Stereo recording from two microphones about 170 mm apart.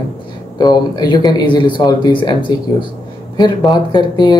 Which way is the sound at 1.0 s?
25° left (ahead or behind).